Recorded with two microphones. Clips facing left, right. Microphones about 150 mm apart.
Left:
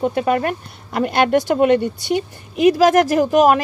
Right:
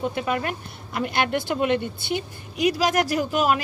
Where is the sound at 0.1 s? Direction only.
45° left (ahead or behind).